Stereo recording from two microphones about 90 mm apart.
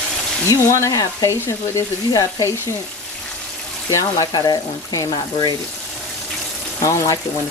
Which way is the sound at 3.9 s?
45° left (ahead or behind).